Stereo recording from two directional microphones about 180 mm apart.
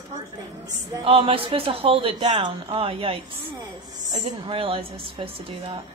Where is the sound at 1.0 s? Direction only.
30° right (ahead or behind).